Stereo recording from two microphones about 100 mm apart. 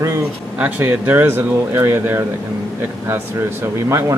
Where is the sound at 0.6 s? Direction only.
20° right (ahead or behind).